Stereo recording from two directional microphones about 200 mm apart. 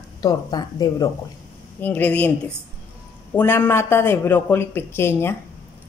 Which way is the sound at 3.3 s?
10° left (ahead or behind).